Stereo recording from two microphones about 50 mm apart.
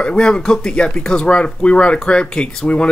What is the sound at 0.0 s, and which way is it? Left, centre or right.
Speech, centre.